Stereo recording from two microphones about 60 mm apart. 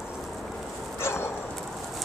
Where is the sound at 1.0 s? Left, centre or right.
Left.